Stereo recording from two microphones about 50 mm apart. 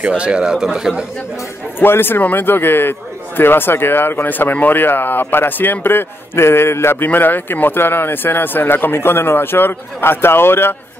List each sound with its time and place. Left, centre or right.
0.0 s speech: right
1.8 s a man's voice: left
7.1 s a man's voice: left